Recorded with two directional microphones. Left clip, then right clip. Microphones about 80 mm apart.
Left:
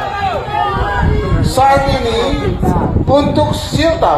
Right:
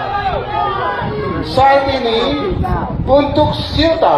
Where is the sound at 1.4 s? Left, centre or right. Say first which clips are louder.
Even; left.